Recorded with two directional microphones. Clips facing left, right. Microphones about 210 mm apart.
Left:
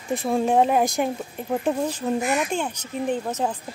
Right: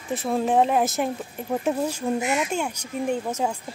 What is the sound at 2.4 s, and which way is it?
Speech, 10° right (ahead or behind).